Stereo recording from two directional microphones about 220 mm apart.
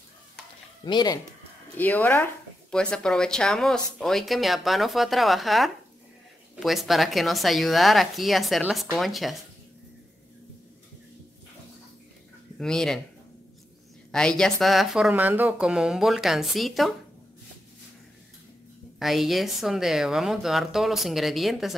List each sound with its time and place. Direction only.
0.8 s speech: 20° left (ahead or behind)
1.8 s speech: 10° left (ahead or behind)
12.5 s speech: 5° left (ahead or behind)
14.1 s speech: 5° left (ahead or behind)
18.9 s speech: centre (ahead or behind)